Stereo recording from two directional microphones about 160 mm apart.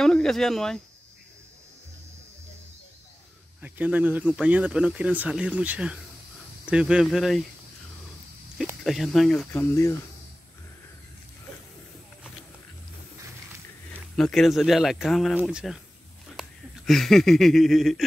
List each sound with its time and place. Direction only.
0.0 s speech: 5° left (ahead or behind)
3.6 s speech: 10° right (ahead or behind)
8.8 s speech: centre (ahead or behind)
9.5 s speech: 15° left (ahead or behind)
13.9 s speech: 5° left (ahead or behind)